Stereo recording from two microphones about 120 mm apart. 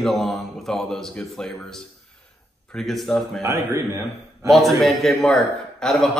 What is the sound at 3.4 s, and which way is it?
A man's voice, 25° right (ahead or behind).